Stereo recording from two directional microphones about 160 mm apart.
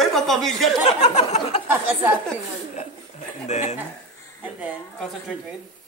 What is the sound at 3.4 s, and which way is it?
Speech, 45° left (ahead or behind).